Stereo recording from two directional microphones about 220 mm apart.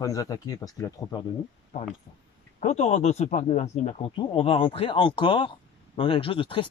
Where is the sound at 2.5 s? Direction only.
30° left (ahead or behind).